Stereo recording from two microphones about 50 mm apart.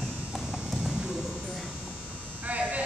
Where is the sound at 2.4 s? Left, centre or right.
Right.